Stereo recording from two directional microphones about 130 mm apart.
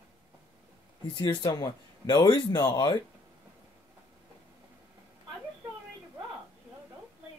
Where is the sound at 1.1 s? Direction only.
30° left (ahead or behind).